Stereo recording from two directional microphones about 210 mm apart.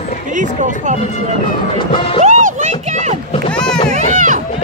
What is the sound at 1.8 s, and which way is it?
Music, 25° left (ahead or behind).